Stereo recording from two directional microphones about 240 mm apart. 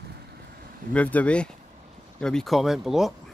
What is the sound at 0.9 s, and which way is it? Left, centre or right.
Speech, centre.